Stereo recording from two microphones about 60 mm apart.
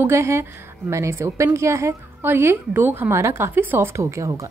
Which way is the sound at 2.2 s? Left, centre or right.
Right.